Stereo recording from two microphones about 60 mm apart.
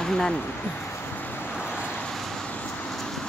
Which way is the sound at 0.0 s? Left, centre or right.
Centre.